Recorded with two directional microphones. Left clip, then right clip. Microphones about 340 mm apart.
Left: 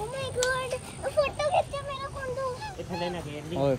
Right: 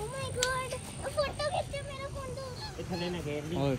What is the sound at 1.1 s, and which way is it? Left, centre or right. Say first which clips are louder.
Speech: left 7 dB; centre.